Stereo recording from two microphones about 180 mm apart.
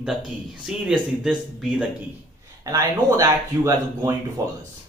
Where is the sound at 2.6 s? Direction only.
15° right (ahead or behind).